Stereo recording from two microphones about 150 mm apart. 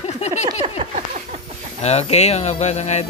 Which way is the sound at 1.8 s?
45° left (ahead or behind).